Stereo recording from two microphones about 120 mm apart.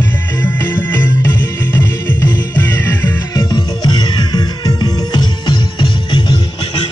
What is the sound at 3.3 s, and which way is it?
Music, 30° left (ahead or behind).